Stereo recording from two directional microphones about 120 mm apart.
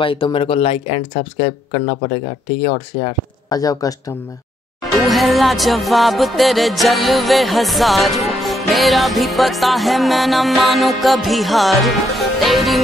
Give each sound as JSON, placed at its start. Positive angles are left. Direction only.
{"t": 0.0, "sound": "speech", "side_deg": 45}
{"t": 3.4, "sound": "speech", "side_deg": 30}
{"t": 4.9, "sound": "music", "side_deg": 0}